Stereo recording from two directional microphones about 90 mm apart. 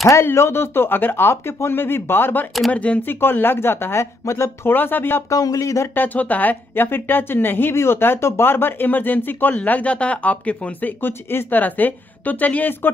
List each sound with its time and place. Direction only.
0.1 s a woman's voice: 30° left (ahead or behind)
5.3 s speech: 40° left (ahead or behind)
5.9 s a woman's voice: 20° left (ahead or behind)